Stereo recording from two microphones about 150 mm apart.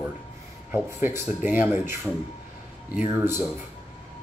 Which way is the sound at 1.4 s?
15° right (ahead or behind).